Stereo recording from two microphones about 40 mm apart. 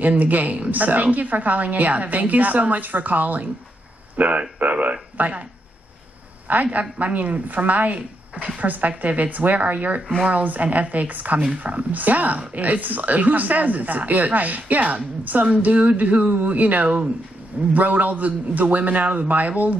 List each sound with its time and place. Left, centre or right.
0.0 s a woman's voice: right
6.4 s a woman's voice: right
17.7 s a woman's voice: right